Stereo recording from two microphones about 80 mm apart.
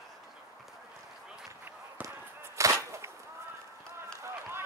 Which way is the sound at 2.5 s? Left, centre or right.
Right.